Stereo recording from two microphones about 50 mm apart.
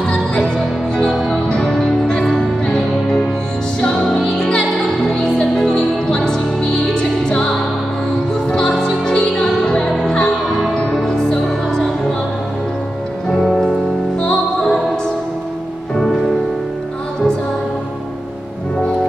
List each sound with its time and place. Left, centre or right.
0.1 s music: centre
13.4 s music: centre